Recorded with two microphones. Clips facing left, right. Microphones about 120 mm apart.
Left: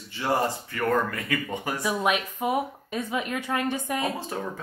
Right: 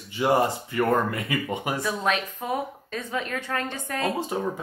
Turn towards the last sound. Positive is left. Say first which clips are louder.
# right 4 dB
turn(degrees=-15)  # may be behind; listen again after turning